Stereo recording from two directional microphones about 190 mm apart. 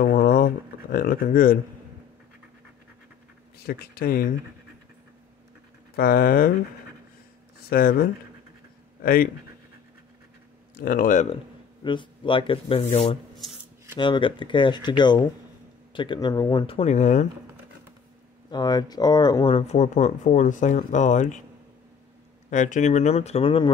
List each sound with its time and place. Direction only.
0.0 s a sound: 50° left (ahead or behind)
0.9 s speech: 50° left (ahead or behind)
3.5 s speech: 55° left (ahead or behind)
5.9 s speech: 50° left (ahead or behind)
7.7 s speech: 50° left (ahead or behind)
10.8 s speech: 45° left (ahead or behind)
11.8 s speech: 25° left (ahead or behind)
18.5 s speech: 20° left (ahead or behind); by 21.4 s 40° left (ahead or behind)
22.5 s speech: 40° left (ahead or behind)